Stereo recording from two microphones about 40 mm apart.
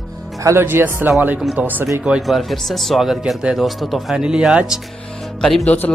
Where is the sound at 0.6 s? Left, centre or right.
Right.